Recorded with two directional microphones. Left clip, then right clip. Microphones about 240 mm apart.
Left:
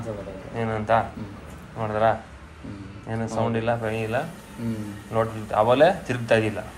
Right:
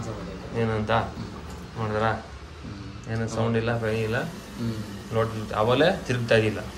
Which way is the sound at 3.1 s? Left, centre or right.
Centre.